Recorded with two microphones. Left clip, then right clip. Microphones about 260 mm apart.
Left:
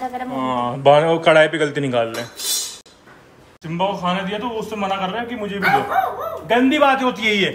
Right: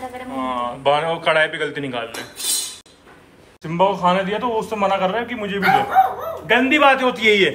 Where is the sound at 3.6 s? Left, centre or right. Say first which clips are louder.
Right 4 dB; centre.